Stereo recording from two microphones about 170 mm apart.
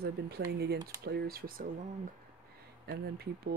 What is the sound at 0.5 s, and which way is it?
Speech, 70° right (ahead or behind).